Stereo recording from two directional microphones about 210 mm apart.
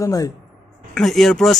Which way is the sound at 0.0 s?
15° left (ahead or behind).